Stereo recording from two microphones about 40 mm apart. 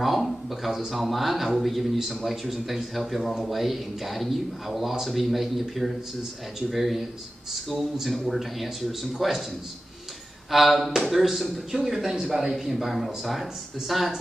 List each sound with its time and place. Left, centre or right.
0.0 s speech: centre
10.5 s speech: centre